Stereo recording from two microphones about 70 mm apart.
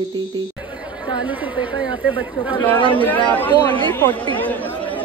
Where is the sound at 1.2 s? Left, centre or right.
Right.